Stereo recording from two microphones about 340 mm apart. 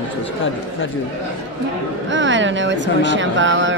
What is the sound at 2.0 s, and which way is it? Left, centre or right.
Speech, right.